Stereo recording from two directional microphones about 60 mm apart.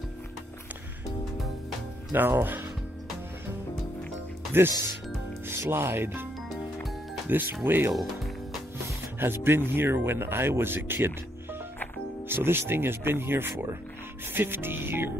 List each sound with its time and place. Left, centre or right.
2.1 s speech: right
5.5 s speech: right
7.3 s speech: right
7.9 s speech: centre
9.2 s speech: right
12.3 s speech: right